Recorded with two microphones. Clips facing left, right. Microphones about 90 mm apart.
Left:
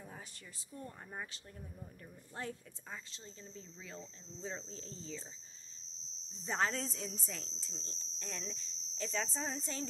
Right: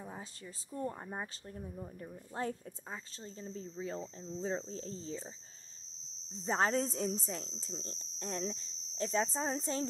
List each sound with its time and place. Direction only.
0.7 s speech: 30° right (ahead or behind)
6.4 s speech: 30° right (ahead or behind)
7.2 s a woman's voice: 25° right (ahead or behind)
7.7 s speech: 50° right (ahead or behind)
8.2 s speech: 35° right (ahead or behind)